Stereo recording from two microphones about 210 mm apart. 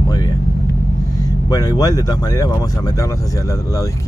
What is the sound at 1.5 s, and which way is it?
Speech, 15° left (ahead or behind).